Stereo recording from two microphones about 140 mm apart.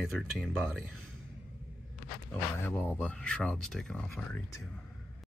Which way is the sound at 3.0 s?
10° left (ahead or behind).